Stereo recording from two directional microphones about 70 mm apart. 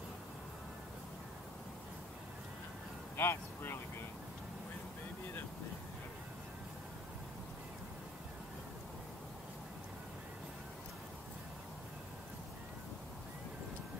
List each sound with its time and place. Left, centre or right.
3.2 s speech: left